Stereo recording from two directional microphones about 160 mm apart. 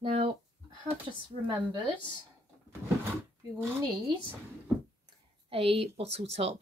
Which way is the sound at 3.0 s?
15° right (ahead or behind).